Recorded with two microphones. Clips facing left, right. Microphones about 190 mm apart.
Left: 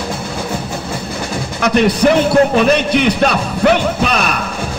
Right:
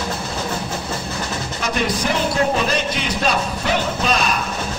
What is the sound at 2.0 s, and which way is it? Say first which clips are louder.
Speech: left 9 dB; 65° left (ahead or behind).